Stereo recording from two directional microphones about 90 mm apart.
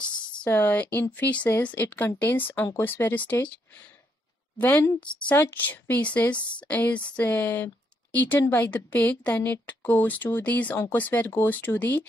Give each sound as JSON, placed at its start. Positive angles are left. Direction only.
{"t": 0.5, "sound": "a woman's voice", "side_deg": 25}